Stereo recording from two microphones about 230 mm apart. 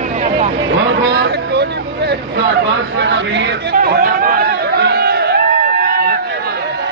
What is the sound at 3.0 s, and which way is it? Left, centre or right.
Chatter, right.